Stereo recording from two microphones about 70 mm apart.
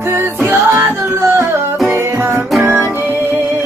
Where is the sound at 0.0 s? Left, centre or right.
Right.